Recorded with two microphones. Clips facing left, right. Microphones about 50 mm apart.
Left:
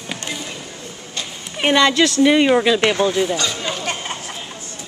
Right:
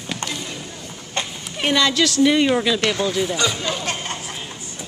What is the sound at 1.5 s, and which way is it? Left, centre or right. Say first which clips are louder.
Speech: left 4 dB; centre.